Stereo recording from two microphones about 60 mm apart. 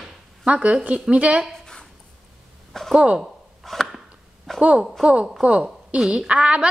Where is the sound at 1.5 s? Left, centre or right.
Centre.